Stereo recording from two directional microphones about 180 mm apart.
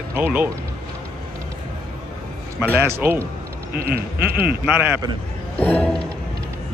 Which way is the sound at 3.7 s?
60° right (ahead or behind).